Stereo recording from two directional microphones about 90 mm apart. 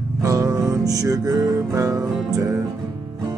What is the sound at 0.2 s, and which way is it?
Music, 35° right (ahead or behind).